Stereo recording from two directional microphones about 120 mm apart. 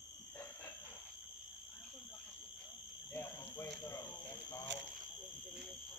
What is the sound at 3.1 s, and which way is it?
Cricket, 20° left (ahead or behind).